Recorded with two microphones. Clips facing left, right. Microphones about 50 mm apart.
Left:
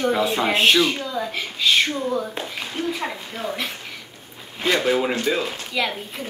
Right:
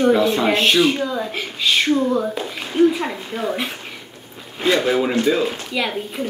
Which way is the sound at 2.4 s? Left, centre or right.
Centre.